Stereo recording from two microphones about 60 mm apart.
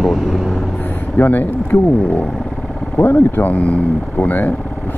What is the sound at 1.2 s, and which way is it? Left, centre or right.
Speech, left.